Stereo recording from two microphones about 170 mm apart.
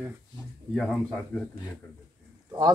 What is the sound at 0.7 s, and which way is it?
Speech, centre (ahead or behind).